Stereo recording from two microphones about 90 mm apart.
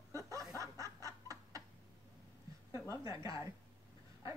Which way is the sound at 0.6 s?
40° right (ahead or behind).